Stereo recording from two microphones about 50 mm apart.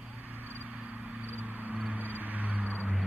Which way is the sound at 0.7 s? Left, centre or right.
Right.